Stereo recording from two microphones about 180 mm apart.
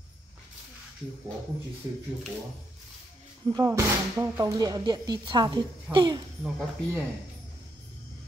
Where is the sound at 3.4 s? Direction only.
20° right (ahead or behind).